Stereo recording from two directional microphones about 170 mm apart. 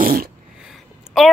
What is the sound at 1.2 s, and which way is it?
Speech, centre (ahead or behind).